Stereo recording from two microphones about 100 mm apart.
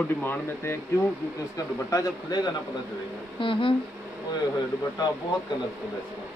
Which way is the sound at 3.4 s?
60° left (ahead or behind).